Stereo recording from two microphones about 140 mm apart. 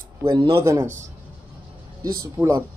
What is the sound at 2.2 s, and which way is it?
Speech, 20° right (ahead or behind).